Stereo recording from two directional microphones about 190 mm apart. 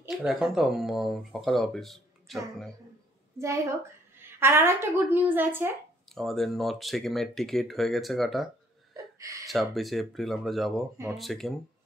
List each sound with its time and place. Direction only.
0.1 s speech: 5° right (ahead or behind)
3.3 s a woman's voice: 15° right (ahead or behind)
6.0 s speech: centre (ahead or behind)
8.9 s a sound: 15° right (ahead or behind)
9.5 s speech: centre (ahead or behind)